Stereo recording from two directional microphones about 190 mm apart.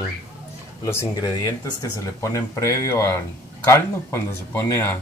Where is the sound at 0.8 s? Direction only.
20° left (ahead or behind).